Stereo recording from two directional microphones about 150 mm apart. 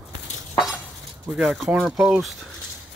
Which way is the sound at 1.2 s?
Centre (ahead or behind).